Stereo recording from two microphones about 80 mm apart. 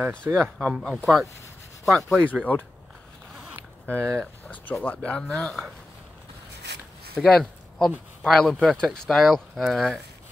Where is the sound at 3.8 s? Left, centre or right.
Centre.